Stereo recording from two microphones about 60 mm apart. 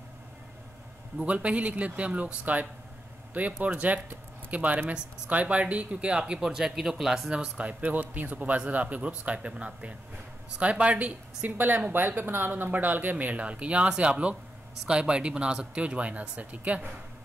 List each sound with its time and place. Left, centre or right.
1.2 s a woman's voice: right; by 7.2 s centre
7.2 s a woman's voice: centre